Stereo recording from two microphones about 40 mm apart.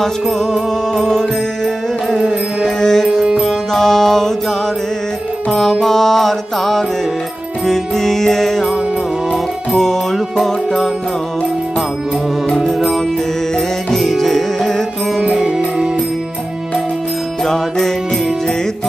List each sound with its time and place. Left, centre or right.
0.3 s music: centre
2.8 s music: centre
5.5 s music: centre
9.7 s music: centre
12.5 s music: centre
17.5 s music: centre